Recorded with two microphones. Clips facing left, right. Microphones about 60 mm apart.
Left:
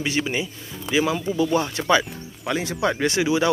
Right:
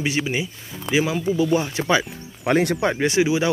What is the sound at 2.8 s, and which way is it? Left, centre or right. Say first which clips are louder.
Speech: right 2 dB; centre.